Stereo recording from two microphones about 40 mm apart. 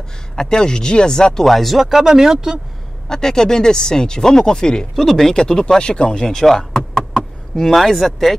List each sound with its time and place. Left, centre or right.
0.4 s speech: centre
1.4 s speech: centre
2.0 s speech: centre
3.1 s speech: centre
4.9 s speech: centre
6.7 s a sound: centre